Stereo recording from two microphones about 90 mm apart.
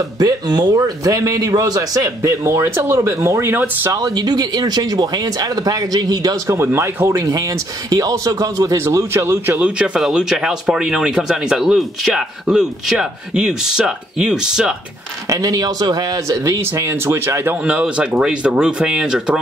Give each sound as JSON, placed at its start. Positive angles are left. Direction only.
{"t": 0.2, "sound": "a man's voice", "side_deg": -45}
{"t": 3.9, "sound": "speech", "side_deg": -45}
{"t": 6.4, "sound": "a man's voice", "side_deg": -30}
{"t": 8.8, "sound": "speech", "side_deg": -25}
{"t": 9.8, "sound": "speech", "side_deg": -5}
{"t": 15.2, "sound": "a man's voice", "side_deg": -40}
{"t": 17.6, "sound": "speech", "side_deg": -15}